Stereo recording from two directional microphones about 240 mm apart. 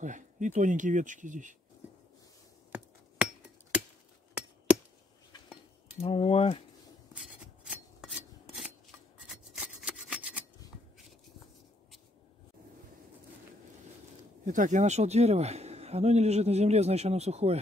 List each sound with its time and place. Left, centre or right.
0.0 s speech: right
2.7 s hammer: centre
5.9 s mechanisms: left
7.2 s filing: centre
9.3 s rub: centre
10.6 s scissors: centre
14.4 s a man's voice: right